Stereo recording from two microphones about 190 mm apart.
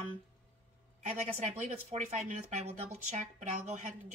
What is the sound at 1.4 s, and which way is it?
Speech, 40° right (ahead or behind).